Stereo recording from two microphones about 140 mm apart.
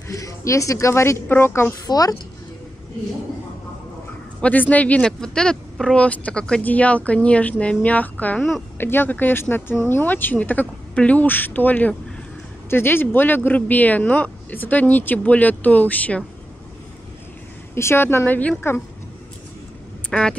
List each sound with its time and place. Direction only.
0.1 s a sound: 25° left (ahead or behind)
0.5 s a woman's voice: 20° left (ahead or behind)
4.4 s speech: 10° left (ahead or behind)
17.7 s speech: 20° left (ahead or behind)
20.1 s speech: 5° left (ahead or behind)